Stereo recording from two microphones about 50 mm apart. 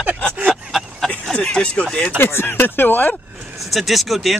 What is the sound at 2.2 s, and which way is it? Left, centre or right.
Speech, left.